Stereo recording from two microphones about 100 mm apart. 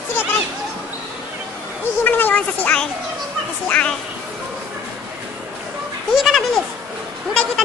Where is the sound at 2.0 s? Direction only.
15° left (ahead or behind).